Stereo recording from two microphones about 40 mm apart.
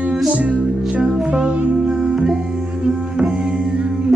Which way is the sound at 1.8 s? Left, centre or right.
Centre.